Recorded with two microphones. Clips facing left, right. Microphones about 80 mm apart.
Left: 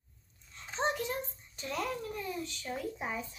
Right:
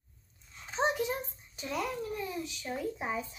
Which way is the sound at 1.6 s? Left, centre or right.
Centre.